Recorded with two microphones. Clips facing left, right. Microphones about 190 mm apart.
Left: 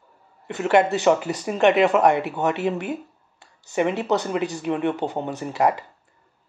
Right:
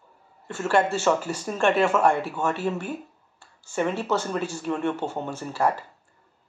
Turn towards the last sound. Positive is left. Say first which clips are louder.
# left 3 dB
turn(degrees=20)  # may be behind; listen again after turning